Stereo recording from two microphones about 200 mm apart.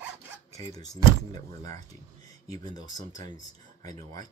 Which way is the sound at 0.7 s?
20° left (ahead or behind).